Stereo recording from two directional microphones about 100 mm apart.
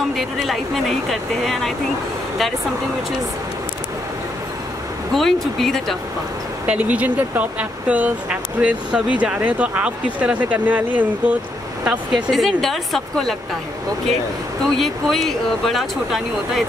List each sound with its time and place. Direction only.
0.1 s speech: centre (ahead or behind)
5.1 s speech: 5° left (ahead or behind)
6.6 s speech: 15° right (ahead or behind)
12.3 s speech: centre (ahead or behind)
14.8 s speech: centre (ahead or behind)